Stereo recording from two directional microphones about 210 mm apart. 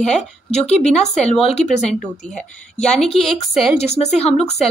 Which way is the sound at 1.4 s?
30° left (ahead or behind).